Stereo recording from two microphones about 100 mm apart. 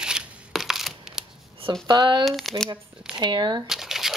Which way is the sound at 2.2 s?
Centre (ahead or behind).